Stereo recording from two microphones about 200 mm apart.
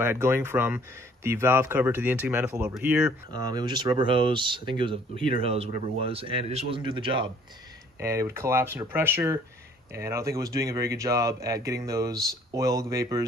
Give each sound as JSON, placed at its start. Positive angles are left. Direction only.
{"t": 0.0, "sound": "speech", "side_deg": -10}
{"t": 3.3, "sound": "a man's voice", "side_deg": -20}